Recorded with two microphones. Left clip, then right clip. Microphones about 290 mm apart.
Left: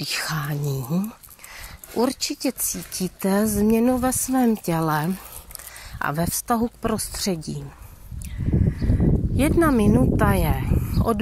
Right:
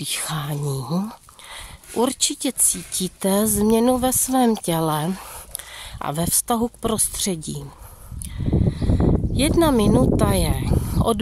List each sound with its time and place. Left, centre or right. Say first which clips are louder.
0.3 s speech: even; right
2.1 s speech: right 2 dB; right
4.0 s speech: right 3 dB; centre
6.4 s speech: even; right
6.8 s speech: right 2 dB; centre
8.5 s a sound: right 3 dB; right
9.4 s speech: right 1 dB; centre